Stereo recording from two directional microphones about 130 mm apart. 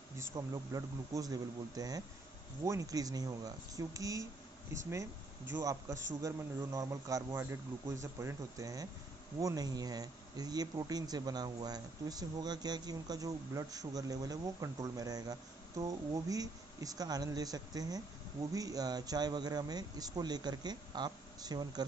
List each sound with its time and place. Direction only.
0.2 s speech: 25° right (ahead or behind)
5.6 s speech: 25° right (ahead or behind)